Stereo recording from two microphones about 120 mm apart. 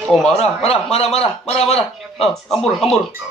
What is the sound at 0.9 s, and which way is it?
Speech, 60° left (ahead or behind).